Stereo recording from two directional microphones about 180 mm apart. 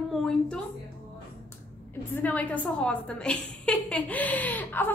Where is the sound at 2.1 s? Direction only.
10° left (ahead or behind).